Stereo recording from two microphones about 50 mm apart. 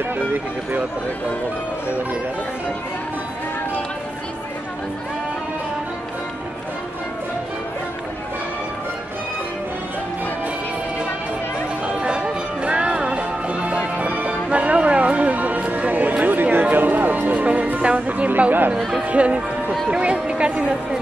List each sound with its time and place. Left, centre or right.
0.3 s speech: right
11.8 s music: centre
18.8 s speech: centre
19.0 s a woman's voice: right